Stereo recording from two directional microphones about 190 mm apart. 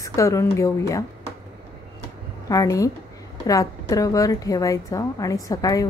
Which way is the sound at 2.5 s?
20° left (ahead or behind).